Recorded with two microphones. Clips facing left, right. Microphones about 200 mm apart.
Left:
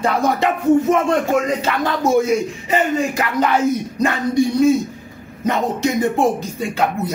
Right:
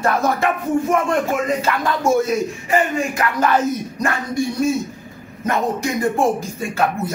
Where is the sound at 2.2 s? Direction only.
20° left (ahead or behind).